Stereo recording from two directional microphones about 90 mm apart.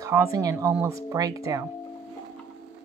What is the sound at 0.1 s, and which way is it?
Speech, 35° right (ahead or behind).